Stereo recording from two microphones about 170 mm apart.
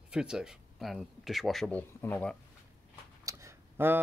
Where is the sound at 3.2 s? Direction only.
20° right (ahead or behind).